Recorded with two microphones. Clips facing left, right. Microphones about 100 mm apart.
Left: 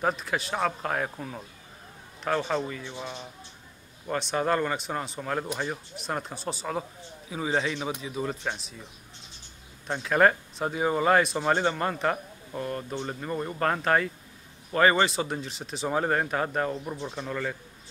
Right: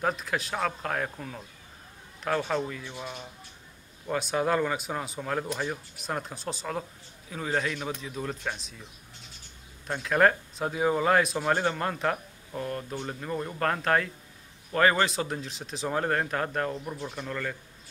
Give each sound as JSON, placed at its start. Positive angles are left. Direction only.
{"t": 0.0, "sound": "speech", "side_deg": 0}
{"t": 4.1, "sound": "a man's voice", "side_deg": -5}
{"t": 8.0, "sound": "speech", "side_deg": 0}
{"t": 10.0, "sound": "speech", "side_deg": 0}
{"t": 16.9, "sound": "speech", "side_deg": 20}
{"t": 17.2, "sound": "a man's voice", "side_deg": 5}